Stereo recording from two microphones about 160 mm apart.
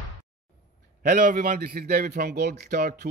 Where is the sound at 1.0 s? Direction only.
75° right (ahead or behind).